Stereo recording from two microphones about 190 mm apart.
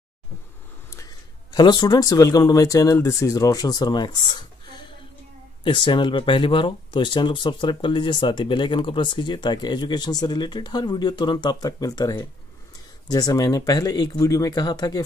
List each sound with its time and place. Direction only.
0.8 s speech: 15° left (ahead or behind)